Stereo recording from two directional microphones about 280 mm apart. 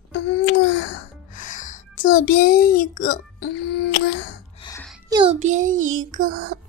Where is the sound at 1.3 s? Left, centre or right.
Left.